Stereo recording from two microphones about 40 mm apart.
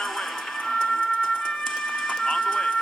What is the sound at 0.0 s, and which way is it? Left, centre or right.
Music, centre.